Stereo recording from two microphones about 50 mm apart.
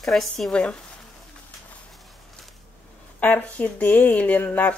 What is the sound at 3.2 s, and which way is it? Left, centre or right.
Speech, left.